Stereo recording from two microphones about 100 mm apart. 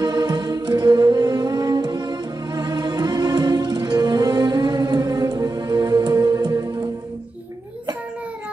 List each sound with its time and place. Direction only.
0.0 s music: 45° right (ahead or behind)